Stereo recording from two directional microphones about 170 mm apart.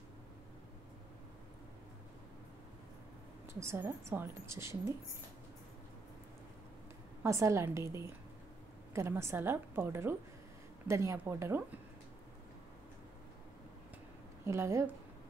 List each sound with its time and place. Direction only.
3.5 s a woman's voice: 15° right (ahead or behind)
7.2 s a woman's voice: 15° right (ahead or behind)
14.4 s a woman's voice: 15° right (ahead or behind)